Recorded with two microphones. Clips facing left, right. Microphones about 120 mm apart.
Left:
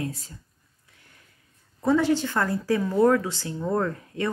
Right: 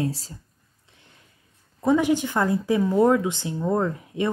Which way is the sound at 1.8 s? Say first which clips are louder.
Right 1 dB; 15° right (ahead or behind).